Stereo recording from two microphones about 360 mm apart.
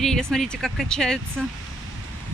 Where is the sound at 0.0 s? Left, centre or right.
Centre.